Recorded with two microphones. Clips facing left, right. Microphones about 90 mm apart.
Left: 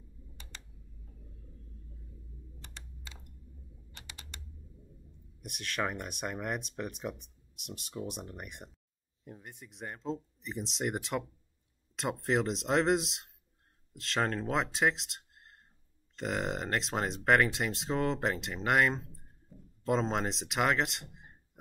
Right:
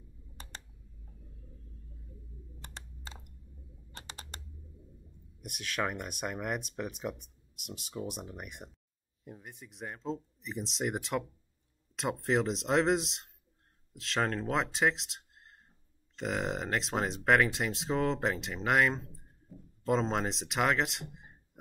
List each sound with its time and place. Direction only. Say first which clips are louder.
2.6 s computer keyboard: right 4 dB; 40° right (ahead or behind)
3.9 s typewriter: right 4 dB; 35° right (ahead or behind)
5.4 s speech: even; centre (ahead or behind)